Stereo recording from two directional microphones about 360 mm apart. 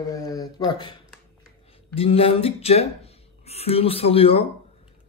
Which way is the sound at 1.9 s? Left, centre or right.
Centre.